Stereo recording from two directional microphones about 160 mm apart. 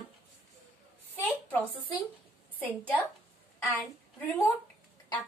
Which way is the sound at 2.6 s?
10° left (ahead or behind).